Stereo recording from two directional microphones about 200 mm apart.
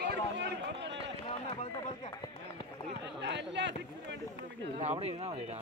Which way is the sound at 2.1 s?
25° left (ahead or behind).